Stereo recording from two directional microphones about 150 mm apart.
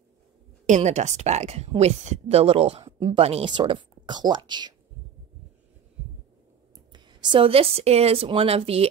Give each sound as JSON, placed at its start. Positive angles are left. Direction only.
{"t": 0.7, "sound": "a woman's voice", "side_deg": -50}
{"t": 3.5, "sound": "speech", "side_deg": -30}
{"t": 6.9, "sound": "a woman's voice", "side_deg": -30}